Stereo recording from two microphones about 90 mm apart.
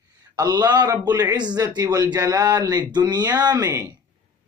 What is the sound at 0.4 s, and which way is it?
A man's voice, 45° right (ahead or behind).